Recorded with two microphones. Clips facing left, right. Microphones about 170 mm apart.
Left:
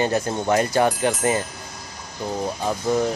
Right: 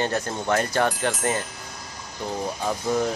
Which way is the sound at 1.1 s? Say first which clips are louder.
Left 4 dB; centre (ahead or behind).